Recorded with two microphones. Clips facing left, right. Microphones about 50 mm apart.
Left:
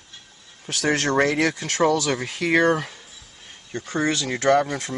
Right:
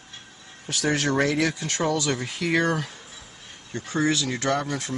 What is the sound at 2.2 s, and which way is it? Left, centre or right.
Speech, left.